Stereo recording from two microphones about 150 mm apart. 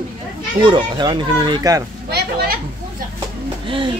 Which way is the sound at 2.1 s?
90° right.